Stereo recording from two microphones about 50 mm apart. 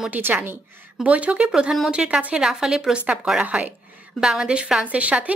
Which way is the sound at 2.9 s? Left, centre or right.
Right.